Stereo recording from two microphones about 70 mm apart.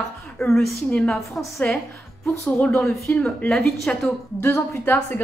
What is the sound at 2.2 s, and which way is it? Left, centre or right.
A woman's voice, centre.